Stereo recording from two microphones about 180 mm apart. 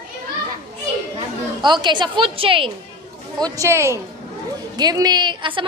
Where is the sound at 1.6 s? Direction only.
25° right (ahead or behind).